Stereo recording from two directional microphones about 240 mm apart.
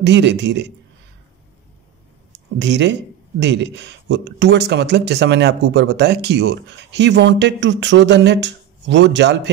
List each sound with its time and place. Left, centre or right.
0.0 s speech: right
2.3 s speech: right